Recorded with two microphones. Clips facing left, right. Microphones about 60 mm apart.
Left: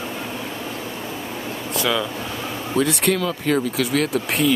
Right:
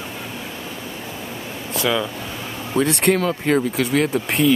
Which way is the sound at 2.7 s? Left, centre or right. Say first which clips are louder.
Right 2 dB; right.